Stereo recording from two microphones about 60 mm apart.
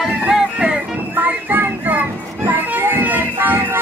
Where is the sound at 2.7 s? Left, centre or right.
Right.